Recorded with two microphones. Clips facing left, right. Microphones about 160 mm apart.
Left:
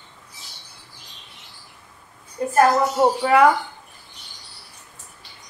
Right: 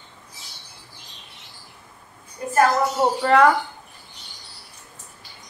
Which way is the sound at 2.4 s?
25° left (ahead or behind).